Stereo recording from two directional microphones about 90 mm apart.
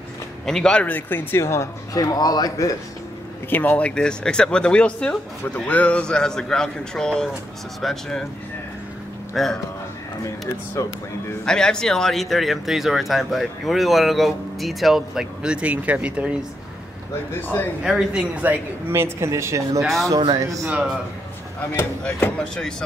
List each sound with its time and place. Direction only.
0.5 s speech: 10° left (ahead or behind); by 2.8 s 40° left (ahead or behind)
3.4 s a man's voice: 20° left (ahead or behind); by 8.3 s 5° left (ahead or behind)
9.3 s speech: centre (ahead or behind)
10.8 s speech: 35° left (ahead or behind)
11.4 s speech: 10° left (ahead or behind); by 16.3 s 15° right (ahead or behind)
17.3 s speech: 25° left (ahead or behind)
17.8 s a woman's voice: 10° right (ahead or behind)
18.9 s speech: 30° right (ahead or behind)
19.8 s speech: centre (ahead or behind)
20.3 s speech: 40° right (ahead or behind)
20.6 s a woman's voice: 15° right (ahead or behind)
22.0 s a man's voice: 10° left (ahead or behind)